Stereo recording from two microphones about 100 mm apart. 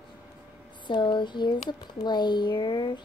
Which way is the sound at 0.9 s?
50° left (ahead or behind).